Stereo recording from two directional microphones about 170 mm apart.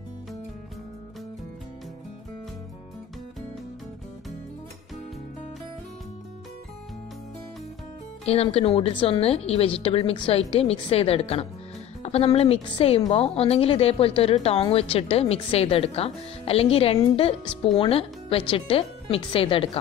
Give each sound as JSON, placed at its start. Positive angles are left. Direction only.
{"t": 8.3, "sound": "a woman's voice", "side_deg": 35}